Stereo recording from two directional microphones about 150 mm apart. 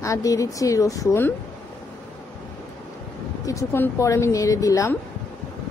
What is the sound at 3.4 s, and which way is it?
Speech, 20° left (ahead or behind).